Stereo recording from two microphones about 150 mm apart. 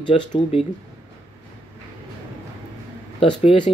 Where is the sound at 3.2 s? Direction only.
35° left (ahead or behind).